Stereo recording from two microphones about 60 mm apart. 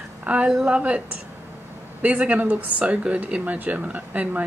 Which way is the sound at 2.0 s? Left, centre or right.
Right.